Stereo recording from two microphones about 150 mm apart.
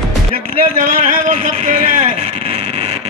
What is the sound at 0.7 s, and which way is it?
Vehicle, 60° right (ahead or behind).